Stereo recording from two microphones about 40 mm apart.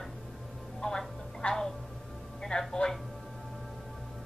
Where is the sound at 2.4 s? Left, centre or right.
Centre.